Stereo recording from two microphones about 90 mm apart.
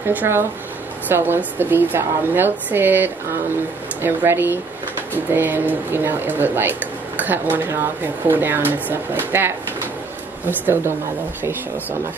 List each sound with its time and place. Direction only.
0.0 s speech: 20° right (ahead or behind)